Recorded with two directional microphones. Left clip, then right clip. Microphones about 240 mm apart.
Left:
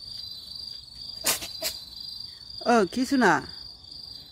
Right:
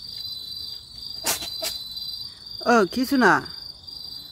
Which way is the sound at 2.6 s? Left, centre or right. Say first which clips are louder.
Right 3 dB; centre.